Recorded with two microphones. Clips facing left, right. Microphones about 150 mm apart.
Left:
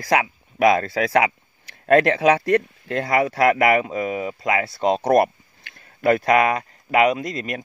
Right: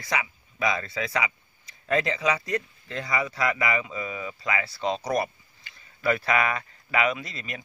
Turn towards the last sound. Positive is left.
turn(degrees=50)  # may be behind; listen again after turning